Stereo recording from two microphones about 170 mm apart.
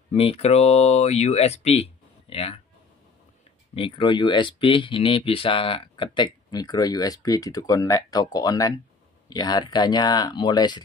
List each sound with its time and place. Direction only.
0.1 s speech: 35° left (ahead or behind)
3.7 s speech: 30° left (ahead or behind)